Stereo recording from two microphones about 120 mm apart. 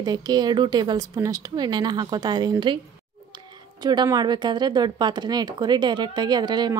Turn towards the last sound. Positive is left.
turn(degrees=-35)  # may be behind; listen again after turning